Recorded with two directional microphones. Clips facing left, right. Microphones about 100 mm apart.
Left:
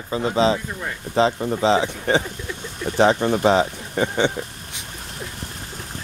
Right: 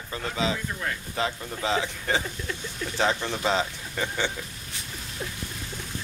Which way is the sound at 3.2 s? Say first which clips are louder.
Left 9 dB; 50° left (ahead or behind).